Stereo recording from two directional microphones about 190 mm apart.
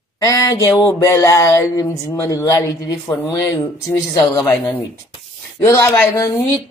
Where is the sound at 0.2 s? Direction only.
20° left (ahead or behind).